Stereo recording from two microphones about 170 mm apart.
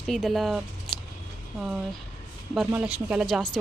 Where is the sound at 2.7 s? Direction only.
5° right (ahead or behind).